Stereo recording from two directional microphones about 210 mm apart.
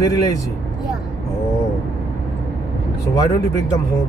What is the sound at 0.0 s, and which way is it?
Speech, 15° left (ahead or behind).